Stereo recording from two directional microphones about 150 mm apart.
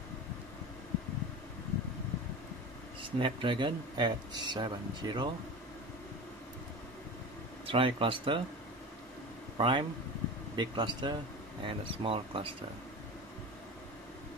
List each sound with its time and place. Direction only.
3.0 s speech: 35° right (ahead or behind)
7.6 s speech: 35° right (ahead or behind)
9.6 s speech: 35° right (ahead or behind)